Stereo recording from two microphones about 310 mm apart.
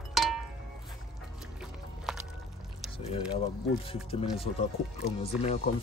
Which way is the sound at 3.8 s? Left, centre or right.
Centre.